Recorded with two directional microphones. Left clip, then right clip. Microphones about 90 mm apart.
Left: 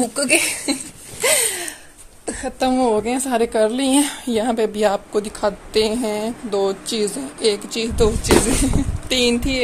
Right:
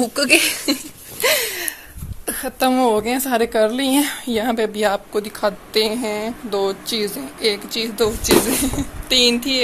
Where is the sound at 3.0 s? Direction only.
10° left (ahead or behind).